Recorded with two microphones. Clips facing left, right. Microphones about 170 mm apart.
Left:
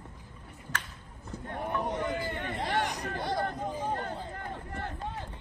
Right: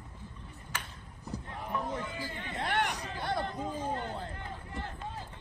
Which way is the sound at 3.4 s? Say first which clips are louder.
Left 2 dB; 65° left (ahead or behind).